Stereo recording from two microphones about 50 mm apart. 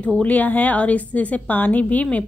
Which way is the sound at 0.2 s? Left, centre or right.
Left.